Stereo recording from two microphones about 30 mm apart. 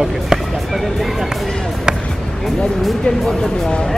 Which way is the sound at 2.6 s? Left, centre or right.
Left.